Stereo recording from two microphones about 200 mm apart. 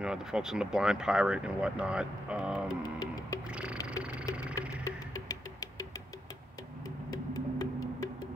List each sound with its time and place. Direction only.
0.0 s speech: 5° right (ahead or behind)
2.8 s music: 20° left (ahead or behind)
3.4 s a sound: 5° right (ahead or behind)
4.8 s music: 15° left (ahead or behind)
7.1 s music: 20° left (ahead or behind)